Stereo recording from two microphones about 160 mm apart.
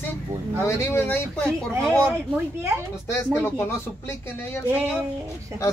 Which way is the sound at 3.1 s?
15° left (ahead or behind).